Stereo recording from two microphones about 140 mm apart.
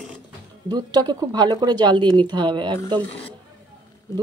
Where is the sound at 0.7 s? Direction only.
30° right (ahead or behind).